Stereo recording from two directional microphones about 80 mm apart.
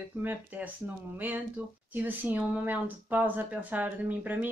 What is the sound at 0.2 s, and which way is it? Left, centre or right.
Speech, right.